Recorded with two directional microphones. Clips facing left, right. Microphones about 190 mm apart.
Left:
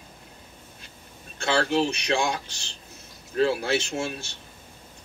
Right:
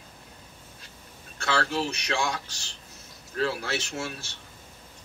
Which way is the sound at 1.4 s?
20° left (ahead or behind).